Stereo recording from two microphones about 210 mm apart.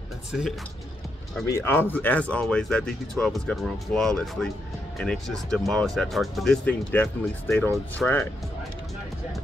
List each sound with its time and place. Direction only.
0.3 s speech: 5° right (ahead or behind)
1.4 s speech: 10° left (ahead or behind)